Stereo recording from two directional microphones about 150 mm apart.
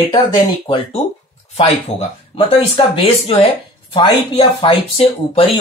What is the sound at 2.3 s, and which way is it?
Speech, 40° left (ahead or behind).